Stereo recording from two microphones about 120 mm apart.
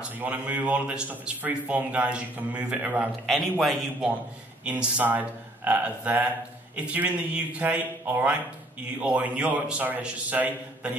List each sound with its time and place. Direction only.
0.2 s a man's voice: 15° right (ahead or behind)